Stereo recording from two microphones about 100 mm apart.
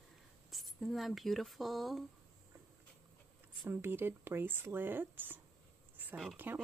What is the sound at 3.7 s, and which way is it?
Speech, 20° right (ahead or behind).